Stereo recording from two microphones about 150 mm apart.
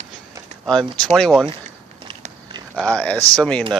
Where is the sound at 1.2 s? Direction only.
5° left (ahead or behind).